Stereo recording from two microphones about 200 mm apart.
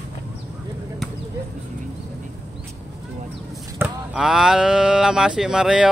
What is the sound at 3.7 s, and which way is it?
Speech, 5° right (ahead or behind).